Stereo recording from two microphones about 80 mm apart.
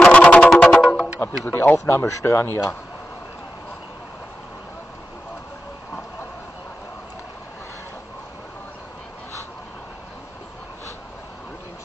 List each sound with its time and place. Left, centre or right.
0.0 s music: centre
1.2 s speech: left